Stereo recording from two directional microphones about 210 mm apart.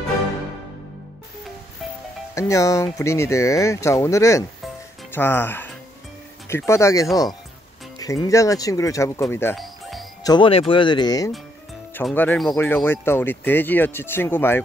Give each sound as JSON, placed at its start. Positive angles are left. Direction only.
{"t": 2.3, "sound": "speech", "side_deg": 15}
{"t": 9.6, "sound": "music", "side_deg": 0}
{"t": 10.2, "sound": "speech", "side_deg": 20}